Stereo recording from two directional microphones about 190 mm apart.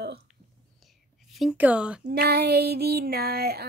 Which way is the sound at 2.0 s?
55° right (ahead or behind).